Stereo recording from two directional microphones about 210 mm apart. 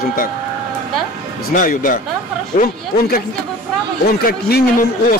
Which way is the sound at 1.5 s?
40° left (ahead or behind).